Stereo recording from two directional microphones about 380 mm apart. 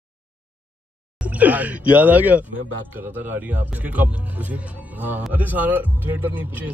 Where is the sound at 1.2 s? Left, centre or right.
Centre.